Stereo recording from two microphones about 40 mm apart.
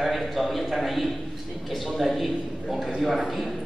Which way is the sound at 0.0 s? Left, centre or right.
Centre.